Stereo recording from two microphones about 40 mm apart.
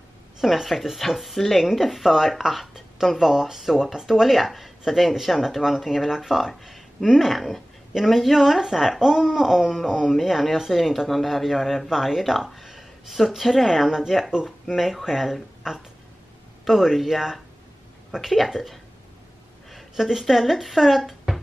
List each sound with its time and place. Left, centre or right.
0.4 s speech: centre
3.2 s speech: centre
14.8 s speech: centre
16.6 s speech: centre